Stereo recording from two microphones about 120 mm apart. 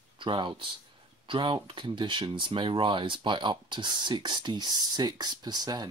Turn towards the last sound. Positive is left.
turn(degrees=-35)  # may be behind; listen again after turning